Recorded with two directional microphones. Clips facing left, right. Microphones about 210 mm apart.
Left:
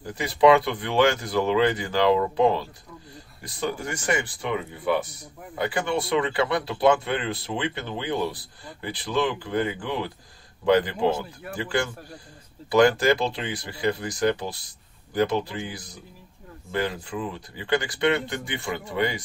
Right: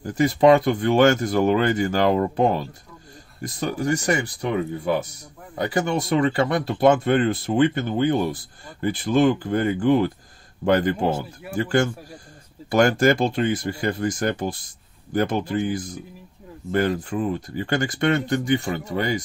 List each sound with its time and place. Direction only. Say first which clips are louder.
0.0 s speech: right 3 dB; 45° right (ahead or behind)